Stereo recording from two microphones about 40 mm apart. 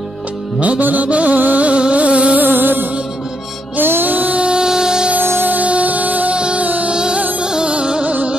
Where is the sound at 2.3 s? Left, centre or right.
Right.